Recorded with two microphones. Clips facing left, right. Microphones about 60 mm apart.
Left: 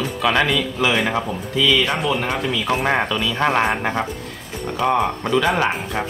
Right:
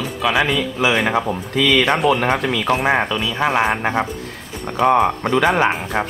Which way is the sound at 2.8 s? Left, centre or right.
Centre.